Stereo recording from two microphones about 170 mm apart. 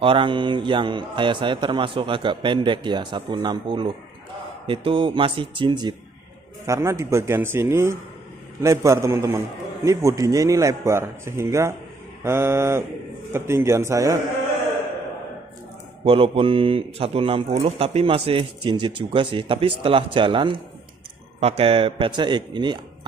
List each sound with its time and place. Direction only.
0.0 s a man's voice: 30° right (ahead or behind)
6.6 s a man's voice: 15° right (ahead or behind)
16.0 s a man's voice: 30° right (ahead or behind)